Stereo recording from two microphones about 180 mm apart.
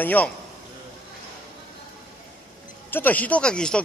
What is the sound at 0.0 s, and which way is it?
Speech, 10° left (ahead or behind).